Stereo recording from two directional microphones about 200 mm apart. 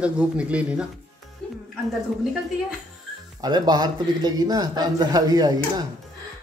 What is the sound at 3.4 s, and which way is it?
Speech, 20° right (ahead or behind).